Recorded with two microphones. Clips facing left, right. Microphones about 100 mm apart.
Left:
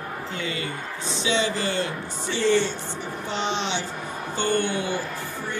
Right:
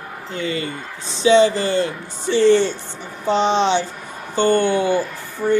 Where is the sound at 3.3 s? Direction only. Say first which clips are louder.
Right 11 dB; 30° right (ahead or behind).